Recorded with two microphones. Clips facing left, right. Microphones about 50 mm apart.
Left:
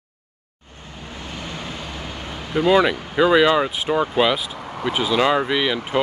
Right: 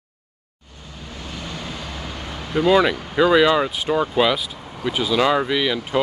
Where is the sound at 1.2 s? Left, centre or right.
Left.